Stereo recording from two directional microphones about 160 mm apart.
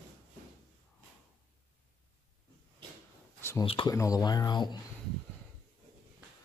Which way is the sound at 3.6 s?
35° left (ahead or behind).